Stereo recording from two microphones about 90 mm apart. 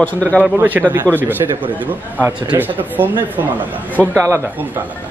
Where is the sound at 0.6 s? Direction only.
20° right (ahead or behind).